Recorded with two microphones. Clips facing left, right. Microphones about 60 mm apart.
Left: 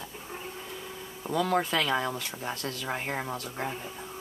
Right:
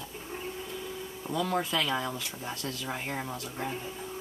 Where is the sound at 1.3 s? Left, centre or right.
Left.